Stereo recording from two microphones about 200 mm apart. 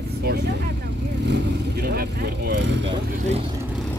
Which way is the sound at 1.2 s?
55° right (ahead or behind).